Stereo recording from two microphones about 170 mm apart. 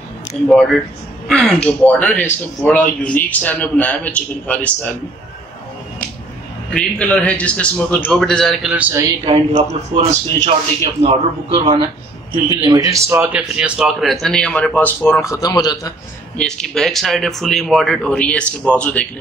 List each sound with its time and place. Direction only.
1.3 s a man's voice: 5° left (ahead or behind)
6.7 s a man's voice: 5° left (ahead or behind)
8.7 s speech: 10° right (ahead or behind)
9.2 s a man's voice: 35° right (ahead or behind)
12.9 s a man's voice: 15° right (ahead or behind); by 15.9 s 25° left (ahead or behind)
16.3 s a man's voice: 5° left (ahead or behind)